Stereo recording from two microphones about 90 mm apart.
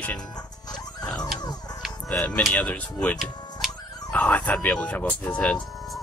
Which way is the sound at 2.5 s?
15° left (ahead or behind).